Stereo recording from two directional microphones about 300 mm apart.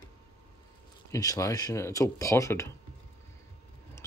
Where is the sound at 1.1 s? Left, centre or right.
Centre.